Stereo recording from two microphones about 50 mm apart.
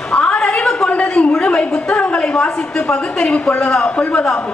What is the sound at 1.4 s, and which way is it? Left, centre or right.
A woman's voice, left.